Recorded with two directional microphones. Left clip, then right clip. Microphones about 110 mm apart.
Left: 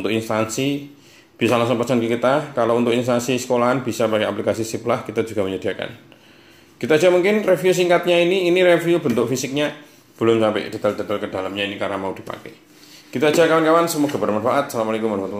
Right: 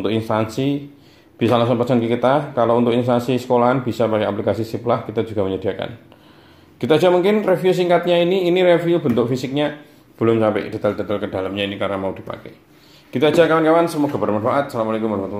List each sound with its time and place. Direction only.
0.0 s speech: 5° right (ahead or behind)
6.8 s a man's voice: 20° right (ahead or behind)
7.5 s speech: 5° right (ahead or behind)